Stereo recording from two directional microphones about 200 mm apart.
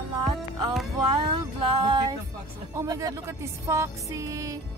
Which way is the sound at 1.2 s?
25° right (ahead or behind).